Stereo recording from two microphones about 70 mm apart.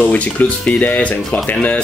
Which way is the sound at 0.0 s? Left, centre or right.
Left.